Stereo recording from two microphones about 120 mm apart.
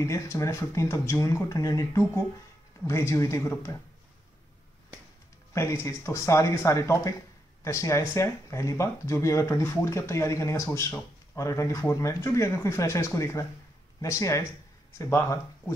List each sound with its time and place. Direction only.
0.0 s speech: 25° left (ahead or behind)
5.5 s speech: 20° left (ahead or behind)